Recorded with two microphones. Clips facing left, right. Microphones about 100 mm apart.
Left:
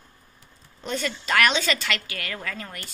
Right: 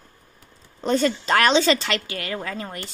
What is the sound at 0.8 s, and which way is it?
A woman's voice, 35° right (ahead or behind).